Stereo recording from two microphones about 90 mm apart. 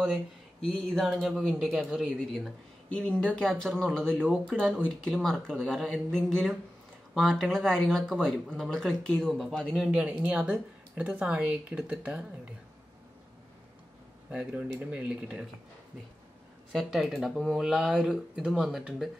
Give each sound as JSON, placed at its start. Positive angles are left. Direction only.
{"t": 0.1, "sound": "speech", "side_deg": 0}
{"t": 3.0, "sound": "speech", "side_deg": 15}
{"t": 4.2, "sound": "speech", "side_deg": -15}
{"t": 4.8, "sound": "speech", "side_deg": 10}
{"t": 9.8, "sound": "speech", "side_deg": -15}
{"t": 14.3, "sound": "speech", "side_deg": -15}
{"t": 16.7, "sound": "speech", "side_deg": 0}